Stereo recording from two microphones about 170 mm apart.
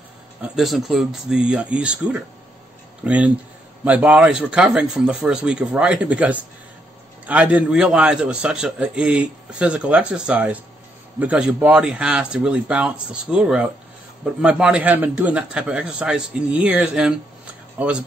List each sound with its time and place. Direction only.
0.4 s a man's voice: centre (ahead or behind)